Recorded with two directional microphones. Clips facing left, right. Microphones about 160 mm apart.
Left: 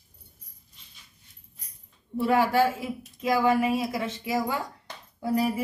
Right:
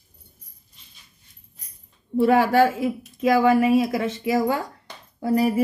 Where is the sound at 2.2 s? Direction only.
65° right (ahead or behind).